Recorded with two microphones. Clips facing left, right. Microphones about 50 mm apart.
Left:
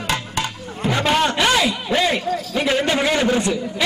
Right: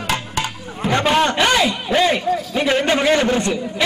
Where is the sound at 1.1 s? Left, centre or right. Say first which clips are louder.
Right 1 dB; centre.